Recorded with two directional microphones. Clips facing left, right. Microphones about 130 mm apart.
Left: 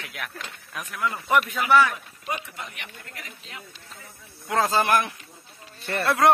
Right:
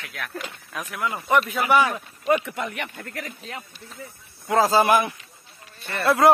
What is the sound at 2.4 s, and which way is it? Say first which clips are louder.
Speech: right 9 dB; 60° right (ahead or behind).